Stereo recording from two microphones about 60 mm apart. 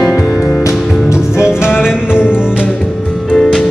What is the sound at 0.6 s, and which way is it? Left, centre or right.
Music, left.